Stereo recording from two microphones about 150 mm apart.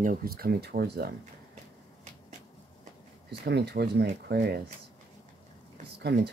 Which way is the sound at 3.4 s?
90° right.